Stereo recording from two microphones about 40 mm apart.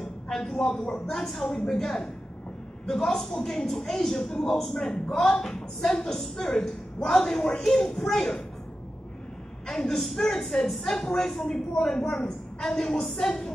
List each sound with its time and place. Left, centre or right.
0.0 s a sound: centre
1.1 s a woman's voice: centre
9.7 s a woman's voice: centre